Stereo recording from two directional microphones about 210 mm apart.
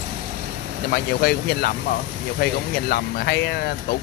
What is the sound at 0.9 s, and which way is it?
Speech, 50° left (ahead or behind).